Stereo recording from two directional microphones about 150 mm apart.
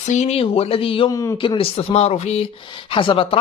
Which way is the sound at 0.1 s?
45° left (ahead or behind).